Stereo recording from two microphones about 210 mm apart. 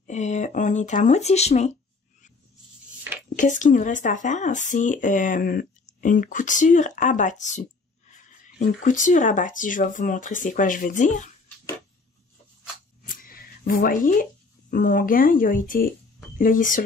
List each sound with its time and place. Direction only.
0.0 s speech: 35° left (ahead or behind)
3.3 s speech: 35° left (ahead or behind)
13.0 s a sound: 40° left (ahead or behind)
14.7 s speech: 40° left (ahead or behind)